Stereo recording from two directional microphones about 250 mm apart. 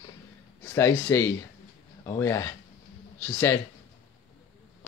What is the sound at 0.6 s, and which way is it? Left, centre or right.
Speech, centre.